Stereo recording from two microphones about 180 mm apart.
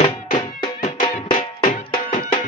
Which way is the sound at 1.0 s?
50° left (ahead or behind).